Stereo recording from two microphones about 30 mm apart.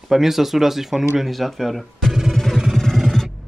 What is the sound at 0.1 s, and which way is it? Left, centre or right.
Speech, centre.